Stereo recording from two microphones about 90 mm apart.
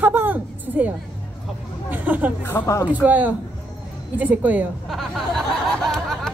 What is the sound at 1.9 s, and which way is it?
Chatter, 20° right (ahead or behind).